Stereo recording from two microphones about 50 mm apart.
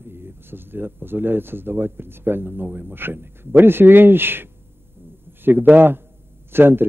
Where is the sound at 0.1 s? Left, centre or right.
Right.